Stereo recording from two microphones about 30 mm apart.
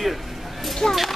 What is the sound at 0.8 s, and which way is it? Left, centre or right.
Speech, left.